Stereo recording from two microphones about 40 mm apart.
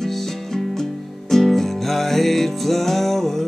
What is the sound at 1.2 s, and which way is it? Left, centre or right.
Music, centre.